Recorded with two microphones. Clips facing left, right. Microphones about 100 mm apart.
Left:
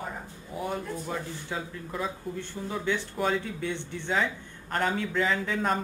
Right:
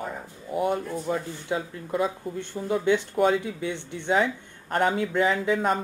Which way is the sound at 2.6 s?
20° right (ahead or behind).